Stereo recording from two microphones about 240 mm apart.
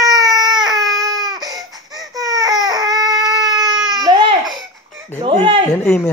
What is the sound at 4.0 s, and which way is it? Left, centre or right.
Baby cry, centre.